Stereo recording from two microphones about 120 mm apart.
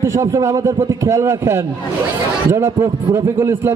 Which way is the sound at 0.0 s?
25° right (ahead or behind).